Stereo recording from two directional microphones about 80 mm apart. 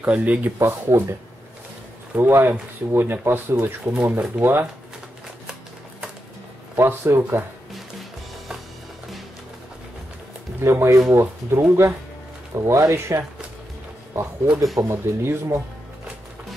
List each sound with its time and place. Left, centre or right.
0.0 s speech: centre
0.6 s speech: right
2.1 s speech: right
6.8 s speech: right
10.6 s speech: right
14.8 s speech: right